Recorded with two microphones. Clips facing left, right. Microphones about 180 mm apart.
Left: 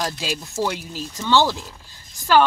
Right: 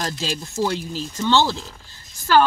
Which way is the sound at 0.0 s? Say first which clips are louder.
Even; 10° left (ahead or behind).